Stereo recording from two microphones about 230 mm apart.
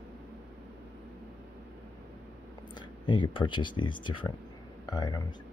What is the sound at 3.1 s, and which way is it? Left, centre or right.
Speech, left.